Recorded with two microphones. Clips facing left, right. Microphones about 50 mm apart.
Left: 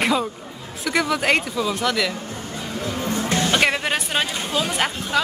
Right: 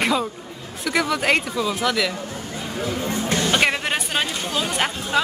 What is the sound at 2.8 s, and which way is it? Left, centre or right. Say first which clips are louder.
Speech: right 1 dB; right.